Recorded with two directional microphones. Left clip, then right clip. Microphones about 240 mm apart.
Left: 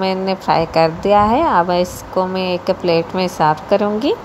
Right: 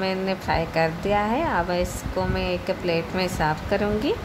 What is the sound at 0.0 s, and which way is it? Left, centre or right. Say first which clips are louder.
A woman's voice: left 8 dB; centre.